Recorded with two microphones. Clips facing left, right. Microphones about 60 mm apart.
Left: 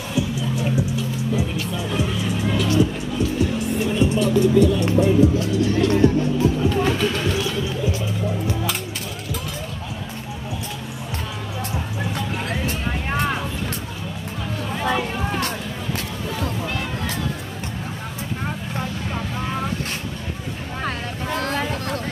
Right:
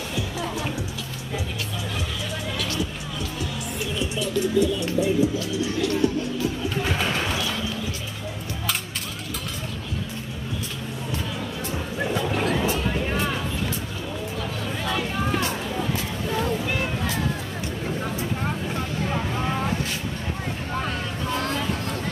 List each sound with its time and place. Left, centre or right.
2.5 s music: left
4.0 s music: left
20.8 s vehicle: left